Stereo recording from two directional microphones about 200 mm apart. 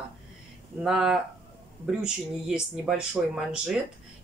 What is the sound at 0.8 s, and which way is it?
Speech, 5° right (ahead or behind).